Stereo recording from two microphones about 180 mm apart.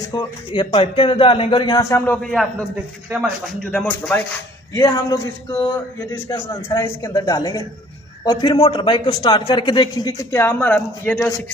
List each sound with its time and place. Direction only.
0.1 s a man's voice: 25° left (ahead or behind); by 3.5 s 5° right (ahead or behind)
3.7 s a man's voice: 10° left (ahead or behind)